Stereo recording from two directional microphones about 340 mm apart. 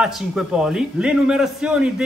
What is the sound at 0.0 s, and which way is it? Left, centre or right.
A man's voice, centre.